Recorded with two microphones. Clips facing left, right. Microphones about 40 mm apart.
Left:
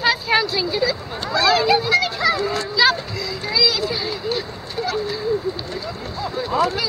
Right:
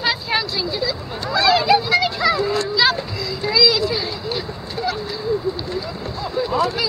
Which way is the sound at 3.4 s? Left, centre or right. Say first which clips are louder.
Right 4 dB; centre.